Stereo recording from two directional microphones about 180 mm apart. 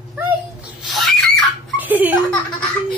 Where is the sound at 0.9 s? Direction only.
Centre (ahead or behind).